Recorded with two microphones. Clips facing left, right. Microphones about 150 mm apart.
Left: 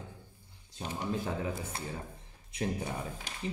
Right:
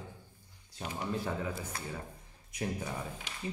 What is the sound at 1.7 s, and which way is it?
Speech, 25° left (ahead or behind).